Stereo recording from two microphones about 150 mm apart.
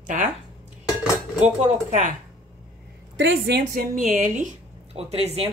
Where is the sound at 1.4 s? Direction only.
55° right (ahead or behind).